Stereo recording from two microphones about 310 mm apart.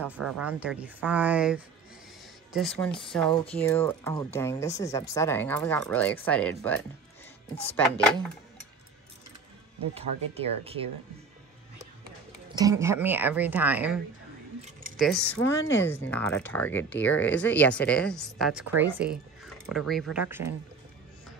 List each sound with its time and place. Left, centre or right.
0.0 s speech: centre
3.1 s speech: centre
9.9 s speech: centre
12.5 s speech: centre
15.0 s speech: centre